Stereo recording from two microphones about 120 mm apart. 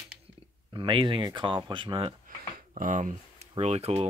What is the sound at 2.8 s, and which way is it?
Speech, 90° right.